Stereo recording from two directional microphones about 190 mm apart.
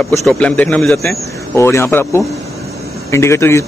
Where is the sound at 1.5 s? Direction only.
15° left (ahead or behind).